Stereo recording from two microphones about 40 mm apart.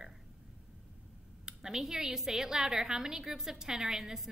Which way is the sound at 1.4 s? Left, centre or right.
Centre.